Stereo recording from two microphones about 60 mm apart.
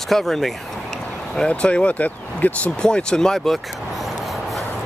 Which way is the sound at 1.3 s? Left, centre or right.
Centre.